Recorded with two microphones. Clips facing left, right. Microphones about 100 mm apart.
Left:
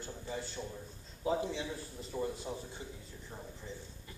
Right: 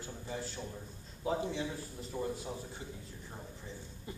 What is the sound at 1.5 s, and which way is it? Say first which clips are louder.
A man's voice: right 1 dB; centre (ahead or behind).